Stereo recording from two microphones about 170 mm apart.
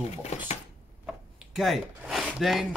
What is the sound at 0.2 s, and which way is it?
Speech, 40° left (ahead or behind).